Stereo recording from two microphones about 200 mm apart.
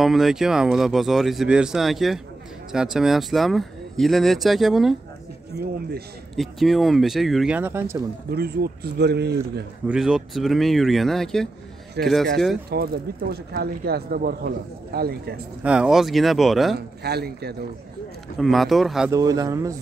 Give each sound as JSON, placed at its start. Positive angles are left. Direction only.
{"t": 0.0, "sound": "speech", "side_deg": 0}
{"t": 5.6, "sound": "speech", "side_deg": -50}
{"t": 6.3, "sound": "speech", "side_deg": 0}
{"t": 8.3, "sound": "speech", "side_deg": -50}
{"t": 9.8, "sound": "speech", "side_deg": -5}
{"t": 12.6, "sound": "speech", "side_deg": -50}
{"t": 15.6, "sound": "speech", "side_deg": -5}
{"t": 16.7, "sound": "speech", "side_deg": -55}
{"t": 18.4, "sound": "speech", "side_deg": 0}
{"t": 19.0, "sound": "speech", "side_deg": -15}